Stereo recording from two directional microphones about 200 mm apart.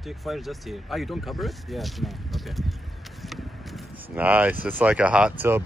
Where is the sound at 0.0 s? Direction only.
Centre (ahead or behind).